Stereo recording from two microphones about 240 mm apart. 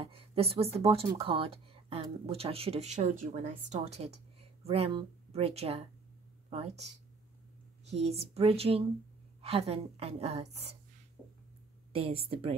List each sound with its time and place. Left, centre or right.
0.0 s speech: right
11.9 s speech: right